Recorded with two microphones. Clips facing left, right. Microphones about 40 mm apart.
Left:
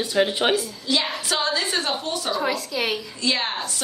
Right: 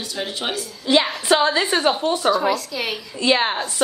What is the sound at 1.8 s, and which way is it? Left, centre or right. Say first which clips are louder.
Speech: right 6 dB; centre.